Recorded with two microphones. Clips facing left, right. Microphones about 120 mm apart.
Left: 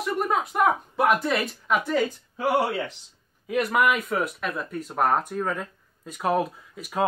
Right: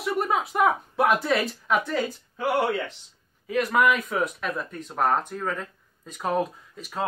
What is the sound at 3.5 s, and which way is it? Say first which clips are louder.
Speech: even; 5° left (ahead or behind).